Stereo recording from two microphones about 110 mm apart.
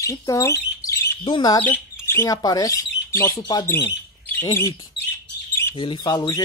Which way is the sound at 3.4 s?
40° left (ahead or behind).